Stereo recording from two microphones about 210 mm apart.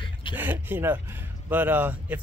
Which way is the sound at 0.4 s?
10° right (ahead or behind).